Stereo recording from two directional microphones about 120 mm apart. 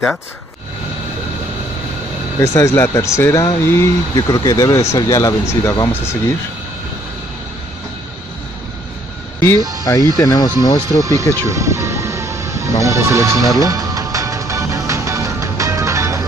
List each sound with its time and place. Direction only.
2.4 s speech: 20° left (ahead or behind)
4.2 s speech: 35° left (ahead or behind)
9.6 s music: 30° right (ahead or behind)
10.2 s speech: 35° left (ahead or behind)
10.9 s speech: 25° right (ahead or behind)
13.6 s music: 30° right (ahead or behind)